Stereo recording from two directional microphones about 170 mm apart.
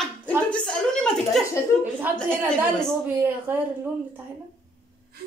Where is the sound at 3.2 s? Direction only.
10° right (ahead or behind).